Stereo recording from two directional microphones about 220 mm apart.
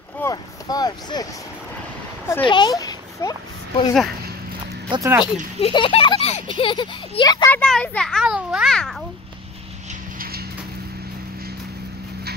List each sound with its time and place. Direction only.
0.2 s speech: 15° left (ahead or behind)
2.4 s a sound: 20° left (ahead or behind)
4.9 s speech: 15° right (ahead or behind)
5.2 s a child's voice: 25° left (ahead or behind)
7.4 s a child's voice: 5° left (ahead or behind)
10.1 s clip-clop: 45° right (ahead or behind)